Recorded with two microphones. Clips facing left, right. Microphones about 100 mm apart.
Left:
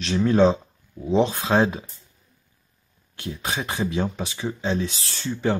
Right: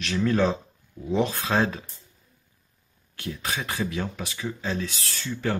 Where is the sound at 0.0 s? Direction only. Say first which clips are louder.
Left 5 dB; 25° left (ahead or behind).